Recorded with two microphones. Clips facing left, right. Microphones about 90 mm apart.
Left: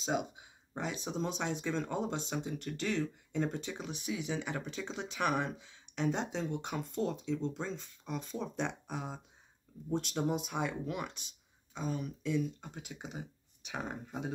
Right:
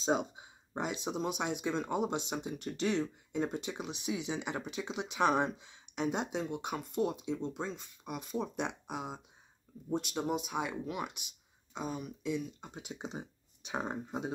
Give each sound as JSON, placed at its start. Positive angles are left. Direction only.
{"t": 0.0, "sound": "speech", "side_deg": -30}